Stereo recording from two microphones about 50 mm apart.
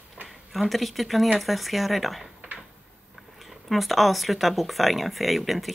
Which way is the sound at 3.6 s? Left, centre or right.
Centre.